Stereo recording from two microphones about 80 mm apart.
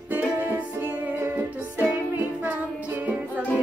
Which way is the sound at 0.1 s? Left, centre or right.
Right.